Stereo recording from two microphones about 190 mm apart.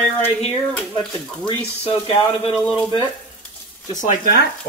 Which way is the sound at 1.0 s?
25° left (ahead or behind).